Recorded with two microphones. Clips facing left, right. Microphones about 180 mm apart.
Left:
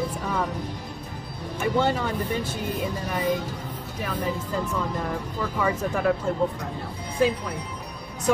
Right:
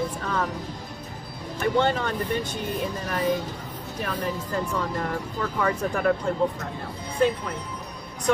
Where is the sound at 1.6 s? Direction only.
5° left (ahead or behind).